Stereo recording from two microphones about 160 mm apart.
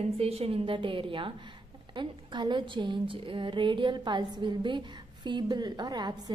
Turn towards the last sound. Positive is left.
turn(degrees=-25)  # may be behind; listen again after turning